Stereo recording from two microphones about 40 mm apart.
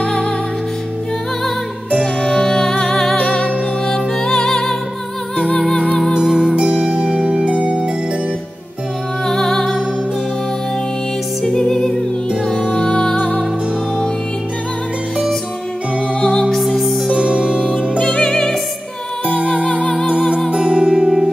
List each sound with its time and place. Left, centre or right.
0.0 s music: left
2.2 s music: centre
3.2 s music: left
3.8 s music: centre
6.1 s music: centre
6.5 s music: right
9.2 s music: centre
11.4 s music: centre
16.2 s music: centre
17.1 s music: right
18.0 s music: centre
19.4 s music: left
20.5 s music: right